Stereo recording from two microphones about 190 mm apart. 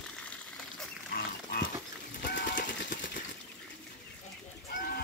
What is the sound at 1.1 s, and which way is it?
Livestock, 55° left (ahead or behind).